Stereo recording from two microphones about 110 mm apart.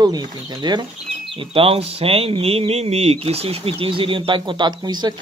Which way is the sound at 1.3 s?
55° right (ahead or behind).